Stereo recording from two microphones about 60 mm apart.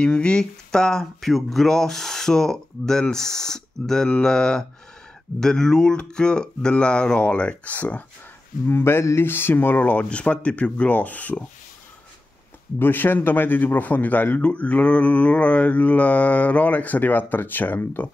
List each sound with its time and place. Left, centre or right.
0.0 s speech: centre
8.6 s a man's voice: left
12.7 s a man's voice: left